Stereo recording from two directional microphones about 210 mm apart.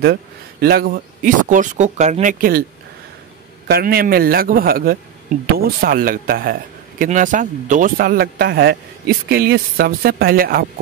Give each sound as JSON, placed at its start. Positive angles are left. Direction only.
{"t": 0.0, "sound": "a man's voice", "side_deg": -50}
{"t": 3.6, "sound": "speech", "side_deg": -45}